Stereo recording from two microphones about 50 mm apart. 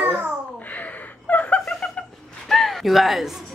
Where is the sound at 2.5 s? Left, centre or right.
Centre.